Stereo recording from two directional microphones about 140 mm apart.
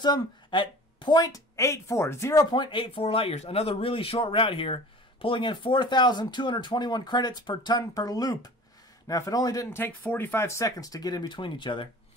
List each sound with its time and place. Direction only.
0.0 s a woman's voice: 35° left (ahead or behind)
2.5 s speech: 35° left (ahead or behind)